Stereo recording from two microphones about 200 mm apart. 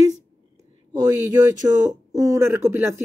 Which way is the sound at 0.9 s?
20° right (ahead or behind).